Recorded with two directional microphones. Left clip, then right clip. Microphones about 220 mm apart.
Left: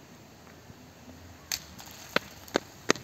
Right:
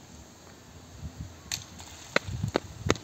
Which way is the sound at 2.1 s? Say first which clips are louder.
Right 1 dB; 10° right (ahead or behind).